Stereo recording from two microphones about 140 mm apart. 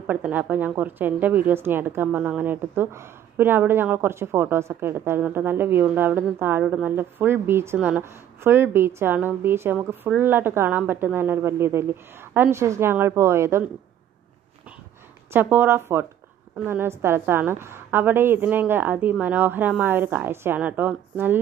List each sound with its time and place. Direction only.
0.0 s a woman's voice: 10° right (ahead or behind)
15.3 s a woman's voice: 15° right (ahead or behind)